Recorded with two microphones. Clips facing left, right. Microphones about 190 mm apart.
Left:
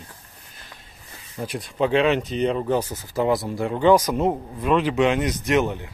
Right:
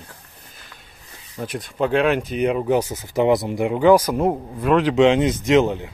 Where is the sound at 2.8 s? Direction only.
20° right (ahead or behind).